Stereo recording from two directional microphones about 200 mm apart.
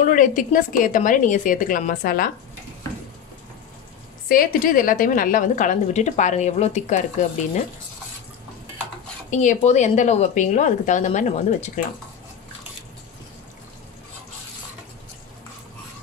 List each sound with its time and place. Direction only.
0.0 s a woman's voice: 40° left (ahead or behind)
4.3 s a woman's voice: 45° left (ahead or behind)
9.3 s a woman's voice: 40° left (ahead or behind)